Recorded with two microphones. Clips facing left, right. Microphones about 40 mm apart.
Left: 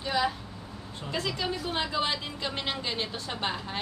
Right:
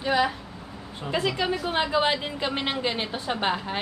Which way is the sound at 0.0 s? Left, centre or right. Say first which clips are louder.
Right 5 dB; centre.